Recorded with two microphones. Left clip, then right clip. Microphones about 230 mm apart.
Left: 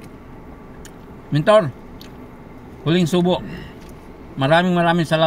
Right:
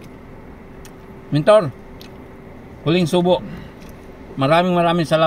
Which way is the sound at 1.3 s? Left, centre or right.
Centre.